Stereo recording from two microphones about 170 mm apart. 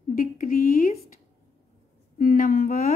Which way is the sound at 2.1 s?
55° left (ahead or behind).